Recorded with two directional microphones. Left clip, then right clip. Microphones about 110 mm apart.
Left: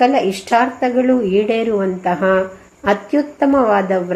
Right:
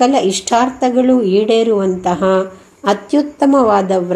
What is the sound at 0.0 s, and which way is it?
A woman's voice, 35° right (ahead or behind).